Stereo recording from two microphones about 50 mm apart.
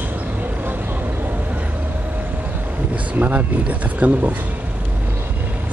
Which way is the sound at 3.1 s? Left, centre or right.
Right.